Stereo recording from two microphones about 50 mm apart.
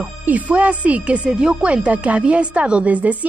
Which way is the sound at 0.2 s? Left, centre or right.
Right.